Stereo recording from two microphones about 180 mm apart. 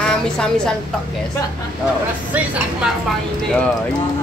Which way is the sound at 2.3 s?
10° right (ahead or behind).